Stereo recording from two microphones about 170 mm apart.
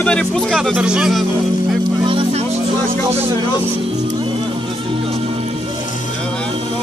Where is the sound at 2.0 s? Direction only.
35° right (ahead or behind).